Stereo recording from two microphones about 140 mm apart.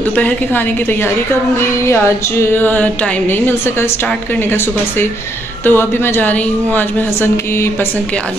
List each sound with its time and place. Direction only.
0.1 s a woman's voice: 10° left (ahead or behind)
2.5 s a woman's voice: 15° left (ahead or behind)
5.7 s a woman's voice: 15° left (ahead or behind)